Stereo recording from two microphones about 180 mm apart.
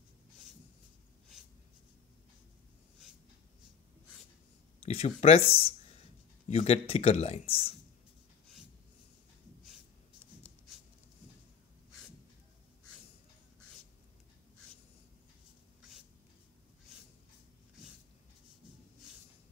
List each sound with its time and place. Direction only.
4.8 s speech: 35° left (ahead or behind)